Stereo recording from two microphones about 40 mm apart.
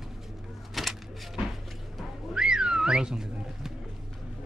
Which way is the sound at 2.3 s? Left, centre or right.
Centre.